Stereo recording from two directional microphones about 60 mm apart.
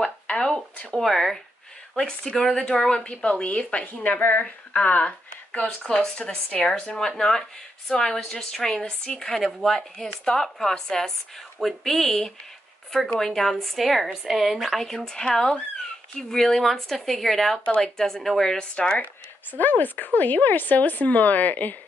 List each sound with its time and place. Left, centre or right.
0.0 s a sound: centre
0.9 s speech: centre; by 4.5 s left
4.7 s speech: left; by 14.8 s centre
15.0 s speech: centre
17.6 s a woman's voice: left
17.9 s speech: centre
18.8 s a woman's voice: centre
19.6 s a woman's voice: left